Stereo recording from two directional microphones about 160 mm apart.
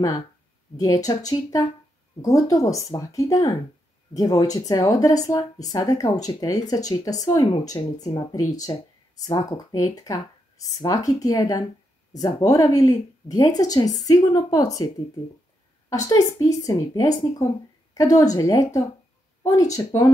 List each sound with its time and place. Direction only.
0.7 s speech: 20° left (ahead or behind)
15.9 s speech: 20° left (ahead or behind)